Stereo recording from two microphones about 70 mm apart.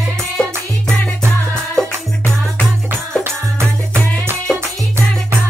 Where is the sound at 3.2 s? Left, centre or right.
Right.